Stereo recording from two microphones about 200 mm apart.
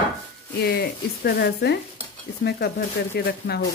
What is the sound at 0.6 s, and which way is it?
Speech, 50° left (ahead or behind).